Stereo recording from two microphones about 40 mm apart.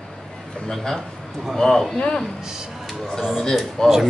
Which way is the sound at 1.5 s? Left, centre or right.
Centre.